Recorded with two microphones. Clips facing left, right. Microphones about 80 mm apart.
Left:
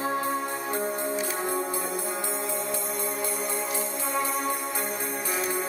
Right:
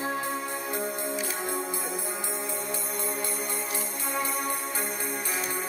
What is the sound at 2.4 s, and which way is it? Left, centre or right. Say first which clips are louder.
Music: left 3 dB; centre.